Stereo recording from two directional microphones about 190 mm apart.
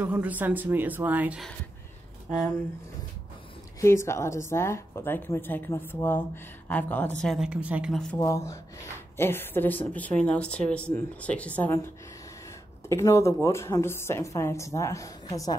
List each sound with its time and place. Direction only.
0.0 s speech: 10° right (ahead or behind)
3.8 s a woman's voice: 15° left (ahead or behind)
8.2 s a woman's voice: 15° left (ahead or behind)
12.8 s a woman's voice: 15° left (ahead or behind)